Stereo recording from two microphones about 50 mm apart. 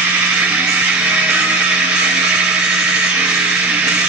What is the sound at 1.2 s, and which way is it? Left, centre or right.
Music, right.